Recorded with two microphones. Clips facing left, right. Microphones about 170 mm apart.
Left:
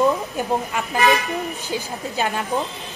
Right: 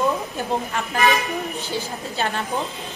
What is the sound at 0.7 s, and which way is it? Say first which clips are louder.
A woman's voice: left 1 dB; 20° left (ahead or behind).